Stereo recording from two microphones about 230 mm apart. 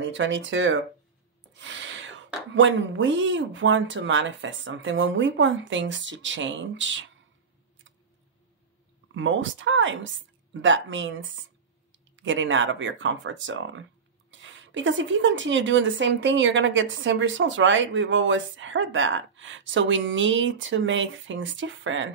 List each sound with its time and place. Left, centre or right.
0.0 s a woman's voice: right
9.1 s a woman's voice: right